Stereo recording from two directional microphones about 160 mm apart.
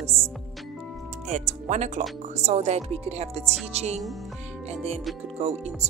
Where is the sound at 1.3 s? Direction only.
45° right (ahead or behind).